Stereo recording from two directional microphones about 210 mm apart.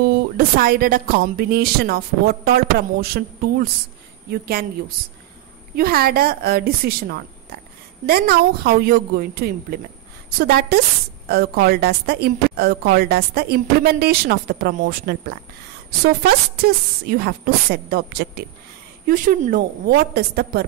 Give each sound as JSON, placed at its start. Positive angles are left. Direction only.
{"t": 0.4, "sound": "a woman's voice", "side_deg": -45}